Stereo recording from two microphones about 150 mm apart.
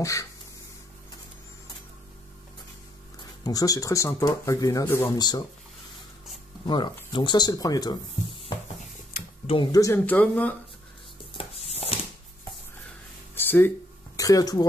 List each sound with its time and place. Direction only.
0.0 s speech: 20° left (ahead or behind)
3.2 s speech: 25° left (ahead or behind)
6.6 s speech: 30° left (ahead or behind)
9.7 s speech: 20° left (ahead or behind)
9.9 s speech: 10° left (ahead or behind)
11.3 s a sound: 45° left (ahead or behind)
13.3 s a sound: 15° left (ahead or behind)
14.1 s speech: 25° left (ahead or behind)